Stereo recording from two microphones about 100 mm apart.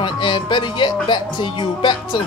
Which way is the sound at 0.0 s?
50° left (ahead or behind).